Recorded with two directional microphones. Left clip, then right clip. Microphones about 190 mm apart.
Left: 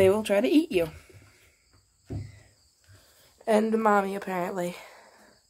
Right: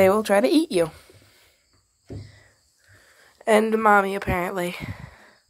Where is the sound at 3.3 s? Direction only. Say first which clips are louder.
Right 5 dB; 20° right (ahead or behind).